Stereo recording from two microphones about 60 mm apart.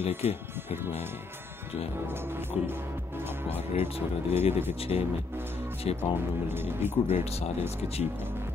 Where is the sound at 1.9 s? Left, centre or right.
Right.